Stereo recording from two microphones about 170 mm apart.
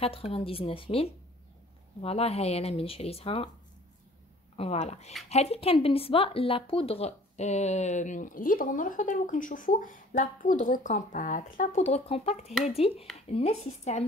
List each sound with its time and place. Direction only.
0.0 s speech: 35° left (ahead or behind)
4.6 s speech: 40° left (ahead or behind)